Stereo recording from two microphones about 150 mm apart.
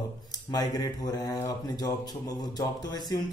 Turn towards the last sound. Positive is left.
turn(degrees=25)  # may be behind; listen again after turning